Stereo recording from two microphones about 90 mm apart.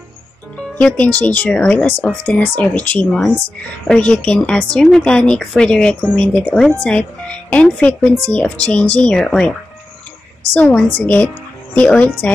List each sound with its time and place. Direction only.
0.7 s speech: 15° left (ahead or behind)